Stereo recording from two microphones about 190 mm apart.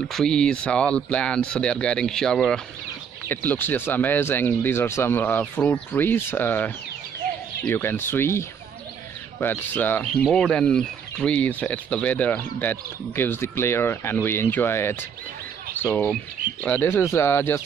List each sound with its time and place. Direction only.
0.1 s speech: 5° left (ahead or behind)